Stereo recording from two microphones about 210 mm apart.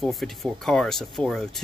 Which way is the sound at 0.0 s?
Centre (ahead or behind).